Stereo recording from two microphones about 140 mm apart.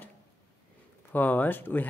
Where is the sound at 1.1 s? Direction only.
10° left (ahead or behind).